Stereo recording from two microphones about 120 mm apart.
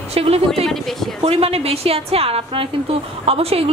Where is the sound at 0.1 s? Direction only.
55° right (ahead or behind).